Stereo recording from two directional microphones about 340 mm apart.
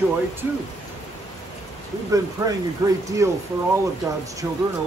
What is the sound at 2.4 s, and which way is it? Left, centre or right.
Speech, centre.